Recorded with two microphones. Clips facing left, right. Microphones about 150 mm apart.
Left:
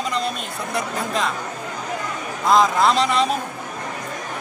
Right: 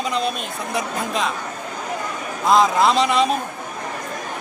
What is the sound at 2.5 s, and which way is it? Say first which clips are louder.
Speech: right 1 dB; 15° right (ahead or behind).